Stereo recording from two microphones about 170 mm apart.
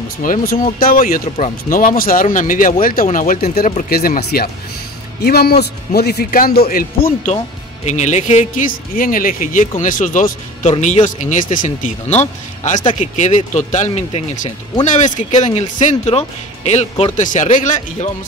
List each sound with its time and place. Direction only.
0.2 s a man's voice: 55° left (ahead or behind)
7.8 s a man's voice: 40° left (ahead or behind)